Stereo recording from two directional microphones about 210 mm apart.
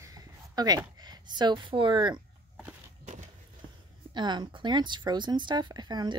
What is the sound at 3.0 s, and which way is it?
Walk, 35° right (ahead or behind).